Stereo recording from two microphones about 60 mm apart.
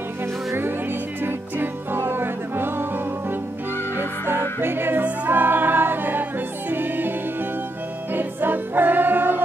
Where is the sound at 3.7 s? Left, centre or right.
Left.